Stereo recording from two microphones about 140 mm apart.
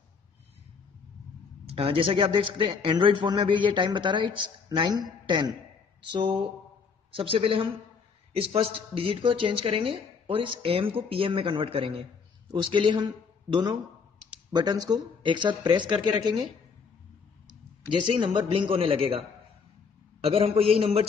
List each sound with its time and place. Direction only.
1.7 s a woman's voice: 40° right (ahead or behind)
18.0 s a woman's voice: 35° right (ahead or behind)